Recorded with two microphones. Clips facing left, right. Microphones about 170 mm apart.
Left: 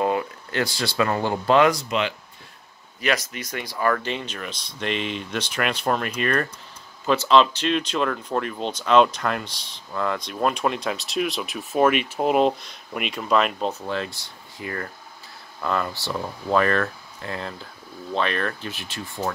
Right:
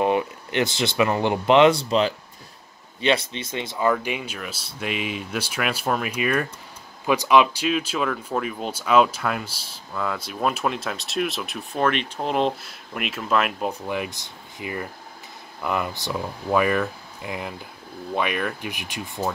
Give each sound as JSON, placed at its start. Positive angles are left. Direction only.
{"t": 0.0, "sound": "speech", "side_deg": -20}